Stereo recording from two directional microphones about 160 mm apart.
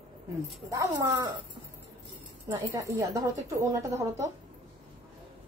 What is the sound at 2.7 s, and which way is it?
A woman's voice, 20° right (ahead or behind).